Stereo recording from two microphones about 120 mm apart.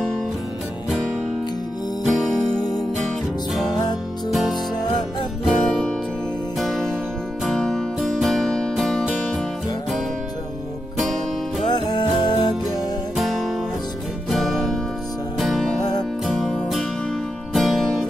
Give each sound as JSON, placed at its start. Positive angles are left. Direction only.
{"t": 2.0, "sound": "music", "side_deg": 0}
{"t": 4.3, "sound": "music", "side_deg": 0}
{"t": 11.7, "sound": "music", "side_deg": 40}
{"t": 13.1, "sound": "music", "side_deg": 0}
{"t": 15.8, "sound": "music", "side_deg": 35}
{"t": 16.3, "sound": "music", "side_deg": 0}